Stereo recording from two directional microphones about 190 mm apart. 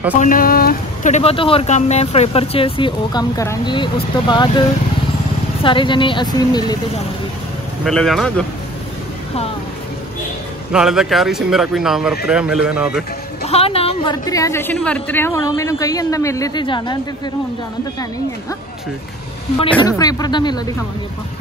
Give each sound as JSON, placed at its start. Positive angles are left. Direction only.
{"t": 0.2, "sound": "a woman's voice", "side_deg": 50}
{"t": 7.8, "sound": "speech", "side_deg": 0}
{"t": 10.7, "sound": "speech", "side_deg": -5}
{"t": 13.5, "sound": "a woman's voice", "side_deg": 30}
{"t": 19.8, "sound": "a woman's voice", "side_deg": 20}